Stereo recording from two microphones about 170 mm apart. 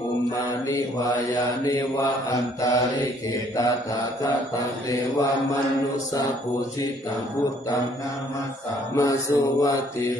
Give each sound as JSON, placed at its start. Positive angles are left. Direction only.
{"t": 0.7, "sound": "mantra", "side_deg": 20}
{"t": 8.9, "sound": "mantra", "side_deg": 20}